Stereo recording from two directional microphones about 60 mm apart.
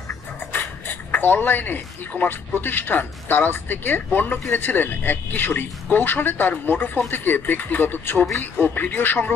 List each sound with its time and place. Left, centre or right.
0.8 s speech: left